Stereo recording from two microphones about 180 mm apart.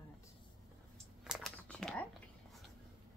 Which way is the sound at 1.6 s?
5° left (ahead or behind).